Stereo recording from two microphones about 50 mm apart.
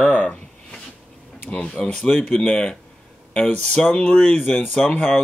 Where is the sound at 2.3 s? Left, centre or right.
Centre.